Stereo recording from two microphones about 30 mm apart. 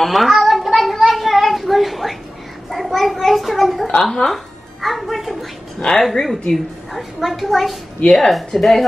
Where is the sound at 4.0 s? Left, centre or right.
Centre.